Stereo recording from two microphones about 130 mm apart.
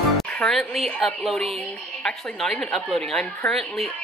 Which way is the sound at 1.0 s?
Centre (ahead or behind).